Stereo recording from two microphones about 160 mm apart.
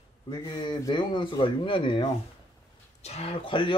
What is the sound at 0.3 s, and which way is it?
Speech, 30° left (ahead or behind).